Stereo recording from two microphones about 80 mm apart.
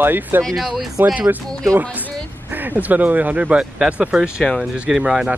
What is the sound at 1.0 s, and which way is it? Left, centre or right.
Speech, centre.